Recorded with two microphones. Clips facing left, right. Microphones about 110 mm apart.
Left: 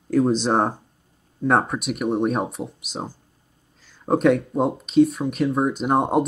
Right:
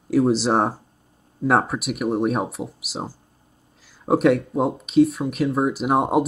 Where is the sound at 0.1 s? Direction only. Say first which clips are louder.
Right 1 dB; 5° right (ahead or behind).